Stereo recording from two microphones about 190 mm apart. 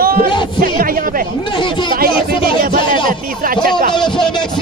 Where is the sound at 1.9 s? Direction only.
50° right (ahead or behind).